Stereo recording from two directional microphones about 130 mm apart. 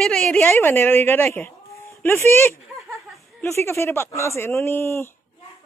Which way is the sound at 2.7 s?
Centre (ahead or behind).